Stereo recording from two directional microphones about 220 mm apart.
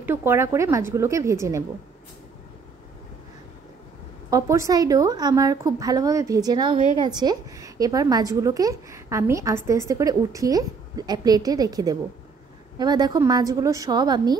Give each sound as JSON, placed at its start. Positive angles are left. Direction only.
{"t": 0.0, "sound": "a woman's voice", "side_deg": -10}
{"t": 4.3, "sound": "a woman's voice", "side_deg": -15}